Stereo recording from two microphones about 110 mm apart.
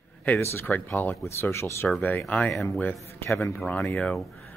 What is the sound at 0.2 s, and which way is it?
A man's voice, 20° left (ahead or behind).